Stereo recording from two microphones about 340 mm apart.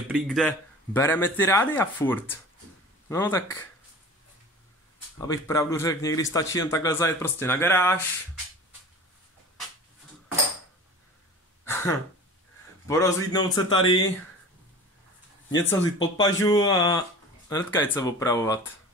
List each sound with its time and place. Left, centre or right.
0.1 s a man's voice: centre
5.2 s a man's voice: centre
11.6 s a sound: centre
12.8 s a man's voice: centre
15.5 s a man's voice: centre